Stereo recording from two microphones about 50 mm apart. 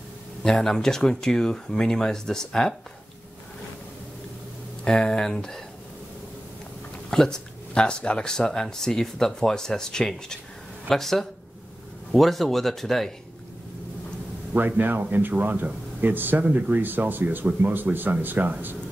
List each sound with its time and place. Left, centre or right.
0.4 s speech: centre
4.8 s speech: centre
7.1 s speech: centre
14.8 s speech: right
16.4 s speech: right